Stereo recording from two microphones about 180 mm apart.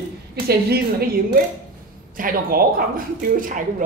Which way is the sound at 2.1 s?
50° right (ahead or behind).